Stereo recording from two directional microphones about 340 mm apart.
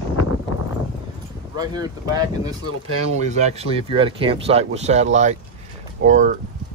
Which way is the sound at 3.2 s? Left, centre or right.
Centre.